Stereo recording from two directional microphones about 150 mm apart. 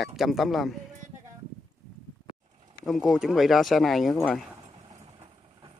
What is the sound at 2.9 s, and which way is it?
Speech, centre (ahead or behind).